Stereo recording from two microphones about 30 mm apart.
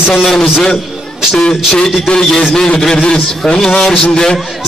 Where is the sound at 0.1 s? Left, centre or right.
Centre.